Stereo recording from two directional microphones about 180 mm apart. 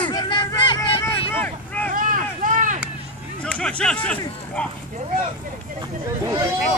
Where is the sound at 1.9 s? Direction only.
50° right (ahead or behind).